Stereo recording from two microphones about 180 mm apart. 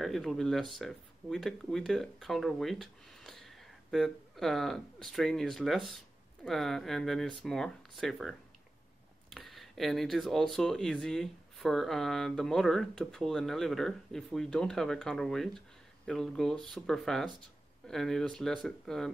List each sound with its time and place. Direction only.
0.0 s speech: centre (ahead or behind)